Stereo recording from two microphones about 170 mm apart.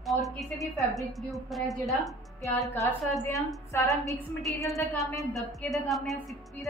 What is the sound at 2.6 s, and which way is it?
A woman's voice, 20° left (ahead or behind).